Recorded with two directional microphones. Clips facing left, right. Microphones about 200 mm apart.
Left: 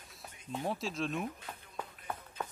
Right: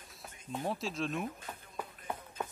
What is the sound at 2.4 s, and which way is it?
Run, 20° right (ahead or behind).